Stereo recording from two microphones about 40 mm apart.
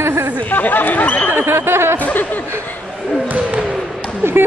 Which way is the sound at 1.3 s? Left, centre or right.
Right.